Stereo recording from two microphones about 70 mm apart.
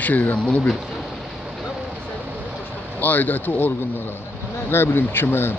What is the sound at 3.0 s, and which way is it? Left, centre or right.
Speech, left.